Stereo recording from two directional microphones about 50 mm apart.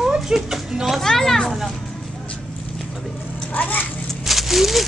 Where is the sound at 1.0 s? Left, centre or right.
Centre.